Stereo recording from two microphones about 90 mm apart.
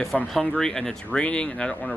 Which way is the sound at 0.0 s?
Centre (ahead or behind).